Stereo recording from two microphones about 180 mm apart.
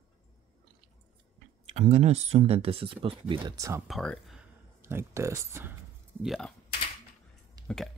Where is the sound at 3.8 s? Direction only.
Centre (ahead or behind).